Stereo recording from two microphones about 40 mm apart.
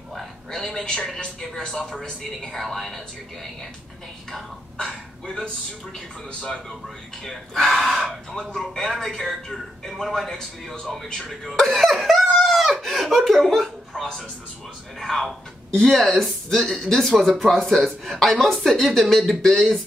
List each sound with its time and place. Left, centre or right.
0.5 s speech: centre
4.7 s a sound: centre
7.2 s speech: centre
11.7 s laughter: centre
12.4 s a sound: centre
12.8 s speech: centre